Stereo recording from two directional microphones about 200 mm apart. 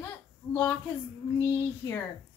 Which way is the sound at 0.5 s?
10° left (ahead or behind).